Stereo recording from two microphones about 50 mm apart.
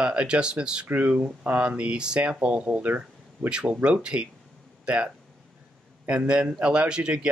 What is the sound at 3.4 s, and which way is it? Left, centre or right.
Speech, centre.